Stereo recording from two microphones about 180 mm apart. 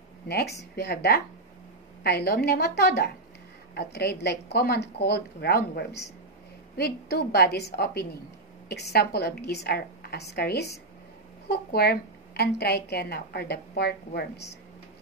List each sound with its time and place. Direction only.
0.3 s a woman's voice: 65° left (ahead or behind)